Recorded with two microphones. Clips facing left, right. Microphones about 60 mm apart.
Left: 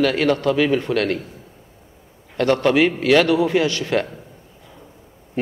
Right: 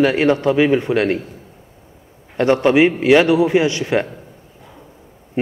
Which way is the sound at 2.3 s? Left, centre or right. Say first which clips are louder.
Right 3 dB; right.